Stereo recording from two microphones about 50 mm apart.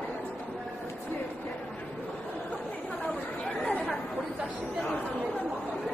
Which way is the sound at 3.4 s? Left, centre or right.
Left.